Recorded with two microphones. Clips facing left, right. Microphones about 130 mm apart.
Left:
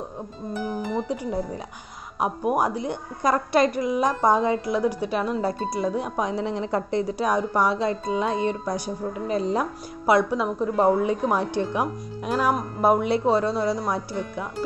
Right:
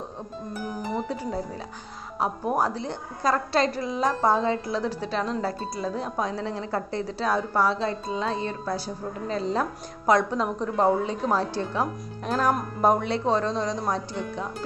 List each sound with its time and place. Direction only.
1.0 s a woman's voice: 15° left (ahead or behind)